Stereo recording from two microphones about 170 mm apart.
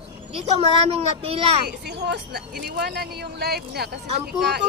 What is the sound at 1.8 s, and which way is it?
Speech, 80° right.